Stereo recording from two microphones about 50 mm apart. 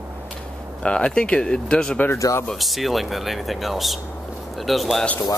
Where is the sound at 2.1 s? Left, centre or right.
Left.